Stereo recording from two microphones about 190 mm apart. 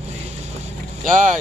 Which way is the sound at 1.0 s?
45° right (ahead or behind).